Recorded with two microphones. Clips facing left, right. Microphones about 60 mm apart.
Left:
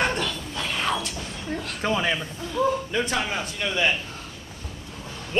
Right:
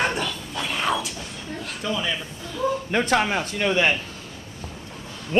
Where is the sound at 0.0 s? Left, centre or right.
Centre.